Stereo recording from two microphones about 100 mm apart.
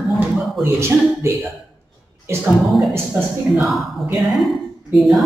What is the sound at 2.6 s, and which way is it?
A man's voice, centre (ahead or behind).